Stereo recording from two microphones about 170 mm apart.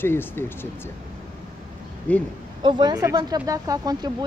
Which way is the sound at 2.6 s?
25° right (ahead or behind).